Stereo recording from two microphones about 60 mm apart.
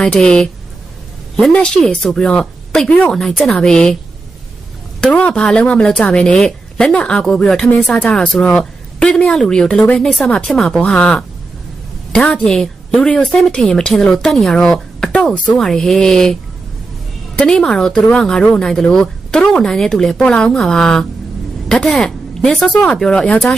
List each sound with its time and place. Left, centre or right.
0.0 s speech: centre
5.0 s speech: centre
12.4 s a woman's voice: centre
17.4 s a woman's voice: centre
23.0 s speech: centre